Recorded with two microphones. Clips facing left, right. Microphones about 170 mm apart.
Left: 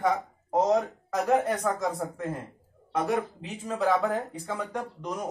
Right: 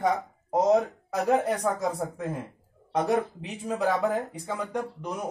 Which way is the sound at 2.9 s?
20° right (ahead or behind).